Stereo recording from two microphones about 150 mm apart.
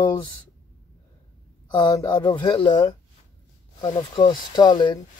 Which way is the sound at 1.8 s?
25° left (ahead or behind).